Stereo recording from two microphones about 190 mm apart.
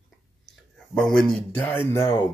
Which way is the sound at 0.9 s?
5° left (ahead or behind).